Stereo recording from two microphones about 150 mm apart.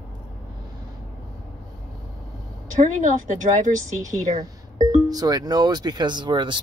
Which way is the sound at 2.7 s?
55° right (ahead or behind).